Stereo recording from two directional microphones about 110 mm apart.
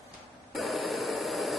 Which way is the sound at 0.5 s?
Centre (ahead or behind).